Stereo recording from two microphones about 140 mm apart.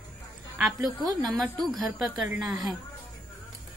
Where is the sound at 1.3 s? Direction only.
5° right (ahead or behind).